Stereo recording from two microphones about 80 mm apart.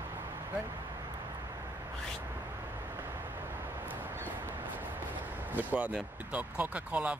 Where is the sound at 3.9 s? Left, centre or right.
Right.